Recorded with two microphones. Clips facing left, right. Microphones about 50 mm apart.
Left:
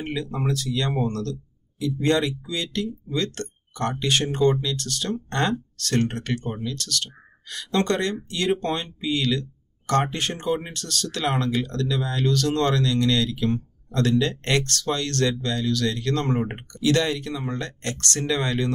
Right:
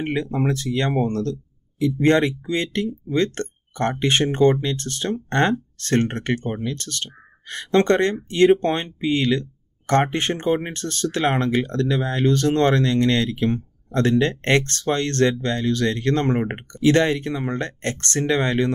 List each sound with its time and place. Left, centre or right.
0.0 s speech: right